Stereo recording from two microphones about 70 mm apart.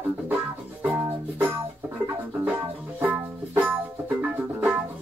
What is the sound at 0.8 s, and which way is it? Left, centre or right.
Music, right.